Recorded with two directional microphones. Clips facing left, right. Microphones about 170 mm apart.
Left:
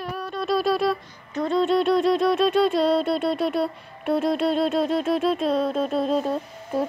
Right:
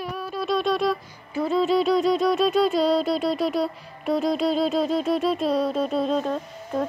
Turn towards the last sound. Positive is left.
turn(degrees=10)  # may be behind; listen again after turning